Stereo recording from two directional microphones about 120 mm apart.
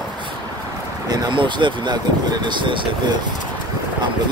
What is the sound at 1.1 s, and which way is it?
Speech, 40° right (ahead or behind).